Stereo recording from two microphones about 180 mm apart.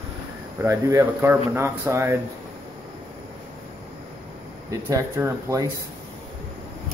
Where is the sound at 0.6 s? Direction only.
15° right (ahead or behind).